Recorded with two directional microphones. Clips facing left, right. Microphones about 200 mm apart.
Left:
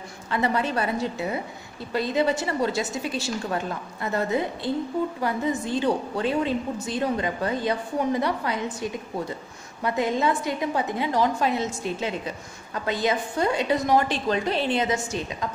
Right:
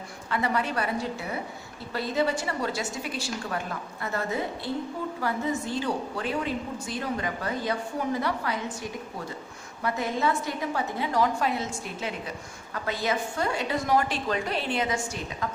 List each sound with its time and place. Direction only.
0.3 s a woman's voice: 25° left (ahead or behind)
9.8 s a woman's voice: 20° left (ahead or behind)